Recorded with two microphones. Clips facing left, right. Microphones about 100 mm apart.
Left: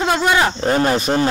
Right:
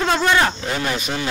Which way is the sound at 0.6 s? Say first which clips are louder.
Left 7 dB; 40° left (ahead or behind).